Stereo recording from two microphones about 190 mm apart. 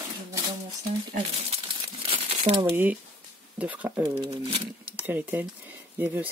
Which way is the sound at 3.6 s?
10° right (ahead or behind).